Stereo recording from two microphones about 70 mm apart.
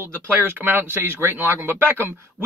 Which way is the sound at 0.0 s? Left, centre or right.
Right.